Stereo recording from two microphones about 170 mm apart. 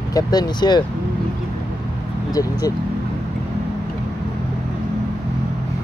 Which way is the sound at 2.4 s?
20° left (ahead or behind).